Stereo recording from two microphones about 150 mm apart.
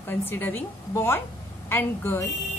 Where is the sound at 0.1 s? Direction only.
15° left (ahead or behind).